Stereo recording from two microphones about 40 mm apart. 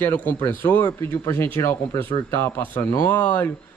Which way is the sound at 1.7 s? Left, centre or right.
Left.